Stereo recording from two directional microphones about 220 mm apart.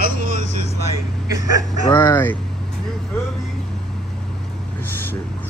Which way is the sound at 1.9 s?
10° left (ahead or behind).